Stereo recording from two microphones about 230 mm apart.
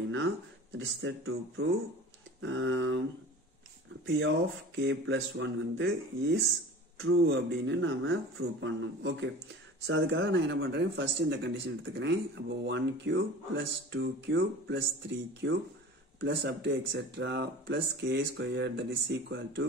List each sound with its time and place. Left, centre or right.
0.7 s speech: right
4.0 s speech: right